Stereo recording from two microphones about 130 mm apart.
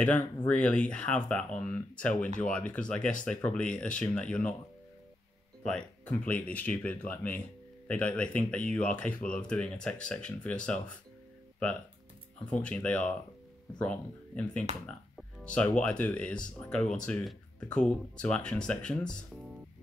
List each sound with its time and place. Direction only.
0.0 s speech: 10° left (ahead or behind)
5.6 s speech: 5° left (ahead or behind)
12.4 s speech: 10° left (ahead or behind)